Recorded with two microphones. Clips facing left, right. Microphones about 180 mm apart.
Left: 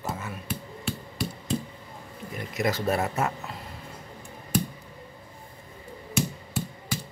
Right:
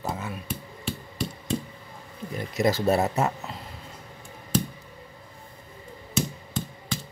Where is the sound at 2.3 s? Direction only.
30° right (ahead or behind).